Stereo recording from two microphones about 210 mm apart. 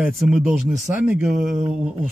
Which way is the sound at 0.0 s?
5° right (ahead or behind).